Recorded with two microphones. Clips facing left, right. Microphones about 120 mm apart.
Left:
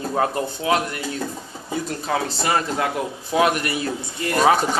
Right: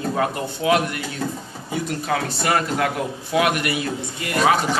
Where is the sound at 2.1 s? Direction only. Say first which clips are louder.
Even; 25° left (ahead or behind).